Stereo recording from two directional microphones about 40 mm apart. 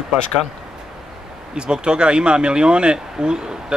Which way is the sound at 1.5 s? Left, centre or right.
Right.